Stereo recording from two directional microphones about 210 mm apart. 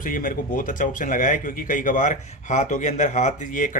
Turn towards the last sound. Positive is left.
turn(degrees=40)  # may be behind; listen again after turning